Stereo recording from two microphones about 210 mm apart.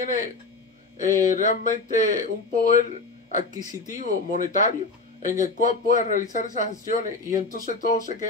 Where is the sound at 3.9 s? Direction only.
35° left (ahead or behind).